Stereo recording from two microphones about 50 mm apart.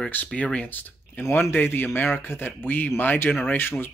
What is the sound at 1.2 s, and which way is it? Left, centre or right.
Speech, left.